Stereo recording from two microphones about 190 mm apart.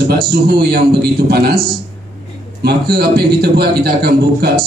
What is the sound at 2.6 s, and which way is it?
A man's voice, 55° right (ahead or behind).